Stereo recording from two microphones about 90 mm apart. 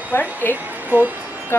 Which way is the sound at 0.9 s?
20° right (ahead or behind).